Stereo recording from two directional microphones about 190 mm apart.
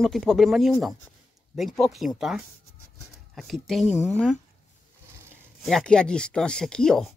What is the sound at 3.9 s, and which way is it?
Speech, 35° left (ahead or behind).